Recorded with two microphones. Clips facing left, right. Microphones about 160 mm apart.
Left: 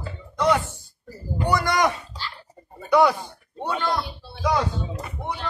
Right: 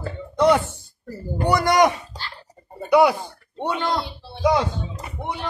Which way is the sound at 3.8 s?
25° right (ahead or behind).